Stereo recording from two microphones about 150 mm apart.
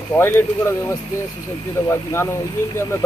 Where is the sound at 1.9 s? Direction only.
15° left (ahead or behind).